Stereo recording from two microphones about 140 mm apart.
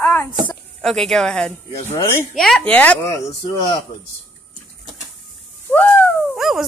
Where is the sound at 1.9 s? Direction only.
20° left (ahead or behind).